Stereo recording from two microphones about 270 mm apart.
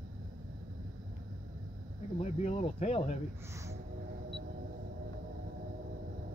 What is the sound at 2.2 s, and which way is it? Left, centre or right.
Speech, left.